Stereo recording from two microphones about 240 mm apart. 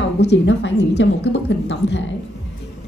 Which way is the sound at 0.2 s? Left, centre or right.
Left.